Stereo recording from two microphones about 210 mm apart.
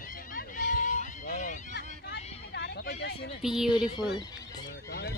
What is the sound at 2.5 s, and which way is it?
Vehicle, 55° left (ahead or behind).